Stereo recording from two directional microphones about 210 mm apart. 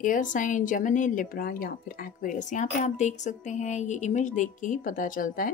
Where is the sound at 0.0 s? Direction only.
40° left (ahead or behind).